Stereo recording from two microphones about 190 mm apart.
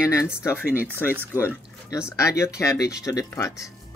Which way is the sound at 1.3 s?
15° left (ahead or behind).